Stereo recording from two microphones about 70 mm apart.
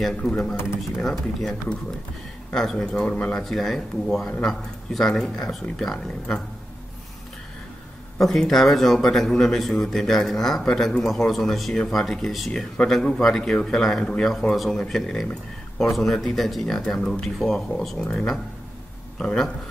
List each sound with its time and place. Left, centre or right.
0.0 s speech: centre
3.4 s speech: centre
8.2 s speech: centre